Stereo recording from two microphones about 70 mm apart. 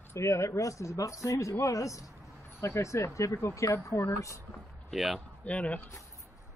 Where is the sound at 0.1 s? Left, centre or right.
Left.